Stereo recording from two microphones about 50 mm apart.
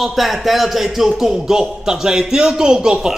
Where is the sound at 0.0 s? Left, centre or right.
Centre.